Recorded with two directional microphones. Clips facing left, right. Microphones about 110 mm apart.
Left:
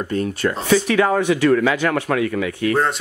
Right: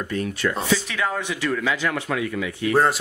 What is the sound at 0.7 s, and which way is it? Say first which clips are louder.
Speech: left 8 dB; 55° left (ahead or behind).